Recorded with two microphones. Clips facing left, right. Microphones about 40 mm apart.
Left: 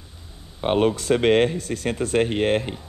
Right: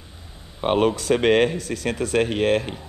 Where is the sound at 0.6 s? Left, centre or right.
Right.